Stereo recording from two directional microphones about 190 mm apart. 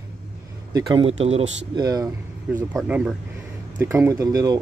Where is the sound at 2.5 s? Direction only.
10° right (ahead or behind).